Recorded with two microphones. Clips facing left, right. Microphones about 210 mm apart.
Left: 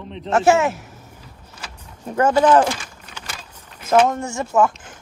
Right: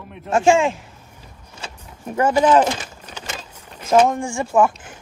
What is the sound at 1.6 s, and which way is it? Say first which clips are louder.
Vehicle: right 3 dB; 25° right (ahead or behind).